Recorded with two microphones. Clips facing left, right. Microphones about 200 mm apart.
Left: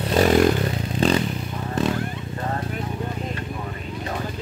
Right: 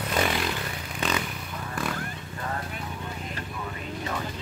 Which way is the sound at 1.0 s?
30° left (ahead or behind).